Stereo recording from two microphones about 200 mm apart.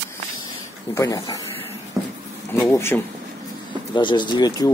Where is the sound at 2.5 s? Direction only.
10° left (ahead or behind).